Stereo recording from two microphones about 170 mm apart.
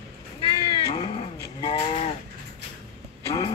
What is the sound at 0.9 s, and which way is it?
Vehicle, 30° left (ahead or behind).